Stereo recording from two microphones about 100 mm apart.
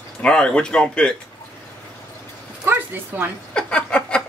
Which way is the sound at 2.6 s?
20° right (ahead or behind).